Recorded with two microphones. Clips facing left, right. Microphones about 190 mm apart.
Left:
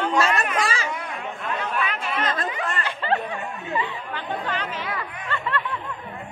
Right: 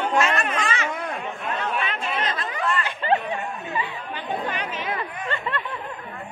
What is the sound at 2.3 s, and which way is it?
Chatter, 45° left (ahead or behind).